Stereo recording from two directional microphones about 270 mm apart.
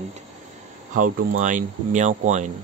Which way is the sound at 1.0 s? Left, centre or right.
Right.